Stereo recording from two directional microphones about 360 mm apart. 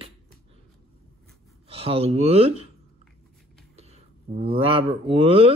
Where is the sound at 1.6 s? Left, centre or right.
Centre.